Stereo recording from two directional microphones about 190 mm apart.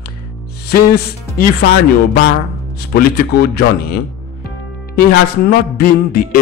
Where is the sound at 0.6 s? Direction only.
55° left (ahead or behind).